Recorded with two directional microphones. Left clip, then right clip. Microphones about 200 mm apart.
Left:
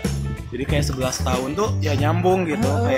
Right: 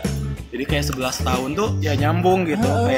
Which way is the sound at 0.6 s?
15° right (ahead or behind).